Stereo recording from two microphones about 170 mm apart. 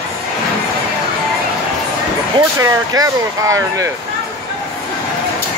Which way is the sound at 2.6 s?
20° right (ahead or behind).